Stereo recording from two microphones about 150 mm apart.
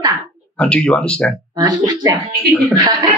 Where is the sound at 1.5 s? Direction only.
30° right (ahead or behind).